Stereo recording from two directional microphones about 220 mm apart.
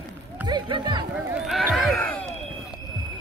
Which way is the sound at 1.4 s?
Centre (ahead or behind).